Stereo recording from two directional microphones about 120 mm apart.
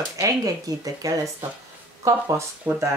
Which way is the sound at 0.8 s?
30° right (ahead or behind).